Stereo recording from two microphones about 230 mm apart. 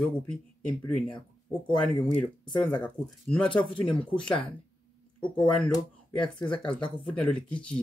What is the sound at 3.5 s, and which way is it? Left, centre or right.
Speech, left.